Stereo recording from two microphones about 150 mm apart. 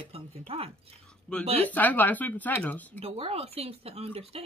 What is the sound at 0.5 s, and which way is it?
Speech, 40° right (ahead or behind).